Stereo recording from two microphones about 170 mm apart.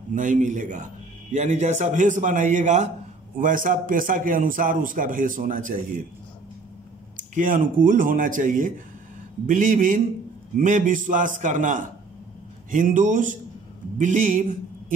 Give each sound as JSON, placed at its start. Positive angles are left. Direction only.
{"t": 0.1, "sound": "a man's voice", "side_deg": -50}
{"t": 7.3, "sound": "a man's voice", "side_deg": -50}